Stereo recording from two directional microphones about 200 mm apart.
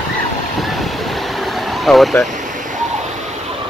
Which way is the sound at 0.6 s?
Centre (ahead or behind).